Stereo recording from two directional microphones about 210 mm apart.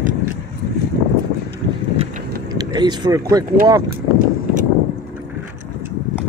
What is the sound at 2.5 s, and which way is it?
Speech, 20° right (ahead or behind).